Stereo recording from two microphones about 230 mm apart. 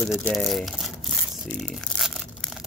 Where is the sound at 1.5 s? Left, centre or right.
Centre.